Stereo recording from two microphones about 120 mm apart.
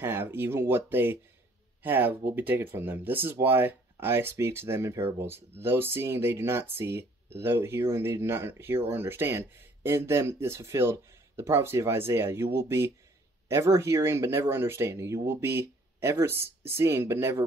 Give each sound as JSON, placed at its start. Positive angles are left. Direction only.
{"t": 0.0, "sound": "speech", "side_deg": -20}